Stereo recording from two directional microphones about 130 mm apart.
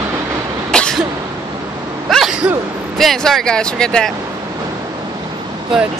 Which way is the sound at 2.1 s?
Centre (ahead or behind).